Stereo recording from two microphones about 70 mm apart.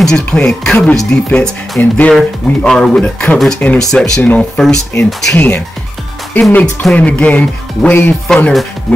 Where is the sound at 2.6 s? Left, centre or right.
Centre.